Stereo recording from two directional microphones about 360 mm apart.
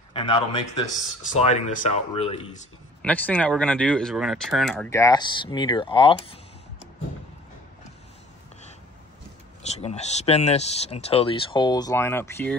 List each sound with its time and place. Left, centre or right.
0.1 s speech: centre
3.0 s speech: centre
9.8 s speech: centre